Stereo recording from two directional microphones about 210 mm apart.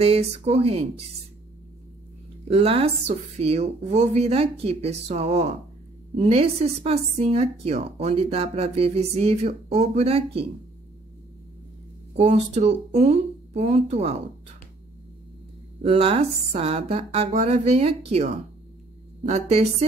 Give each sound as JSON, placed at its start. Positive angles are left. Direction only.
{"t": 0.0, "sound": "a woman's voice", "side_deg": -30}
{"t": 2.4, "sound": "a woman's voice", "side_deg": -30}
{"t": 12.2, "sound": "speech", "side_deg": -30}
{"t": 15.8, "sound": "a woman's voice", "side_deg": -30}